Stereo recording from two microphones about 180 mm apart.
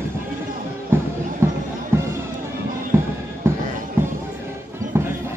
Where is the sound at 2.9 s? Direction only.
15° right (ahead or behind).